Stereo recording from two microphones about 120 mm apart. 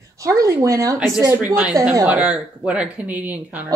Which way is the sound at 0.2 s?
25° right (ahead or behind).